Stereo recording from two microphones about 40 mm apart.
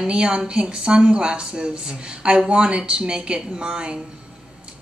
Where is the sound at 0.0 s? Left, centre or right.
Right.